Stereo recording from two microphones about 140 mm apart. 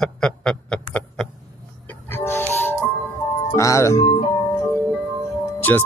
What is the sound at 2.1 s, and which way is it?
Music, 15° left (ahead or behind).